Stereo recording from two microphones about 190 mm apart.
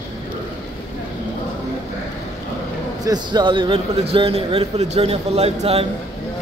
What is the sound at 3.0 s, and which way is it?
A man's voice, 20° right (ahead or behind).